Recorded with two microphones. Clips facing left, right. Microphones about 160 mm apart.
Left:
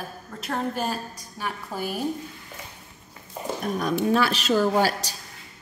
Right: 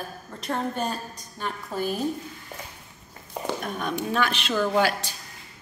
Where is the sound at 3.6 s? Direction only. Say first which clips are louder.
Left 5 dB; 35° left (ahead or behind).